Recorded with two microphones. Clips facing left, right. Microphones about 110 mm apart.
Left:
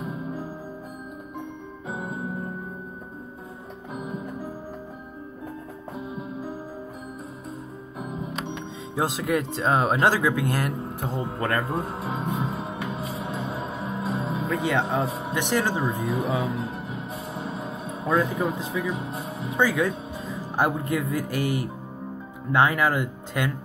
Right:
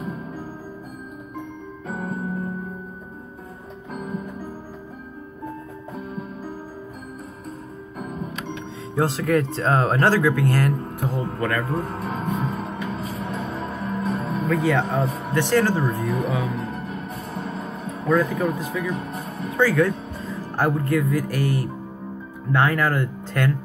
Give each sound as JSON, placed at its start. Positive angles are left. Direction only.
{"t": 1.9, "sound": "music", "side_deg": 10}
{"t": 3.9, "sound": "music", "side_deg": 15}
{"t": 6.0, "sound": "music", "side_deg": 20}
{"t": 8.0, "sound": "speech", "side_deg": 15}
{"t": 12.4, "sound": "music", "side_deg": 15}
{"t": 22.5, "sound": "speech", "side_deg": 15}